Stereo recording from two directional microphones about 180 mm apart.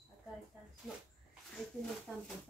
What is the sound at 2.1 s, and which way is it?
Speech, centre (ahead or behind).